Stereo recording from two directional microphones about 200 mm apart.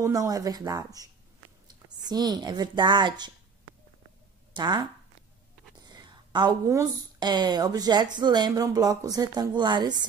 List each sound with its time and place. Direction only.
0.0 s a woman's voice: 15° right (ahead or behind)
4.6 s a woman's voice: 20° right (ahead or behind)